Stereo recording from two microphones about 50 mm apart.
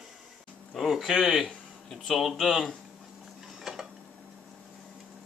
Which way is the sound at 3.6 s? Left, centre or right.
Centre.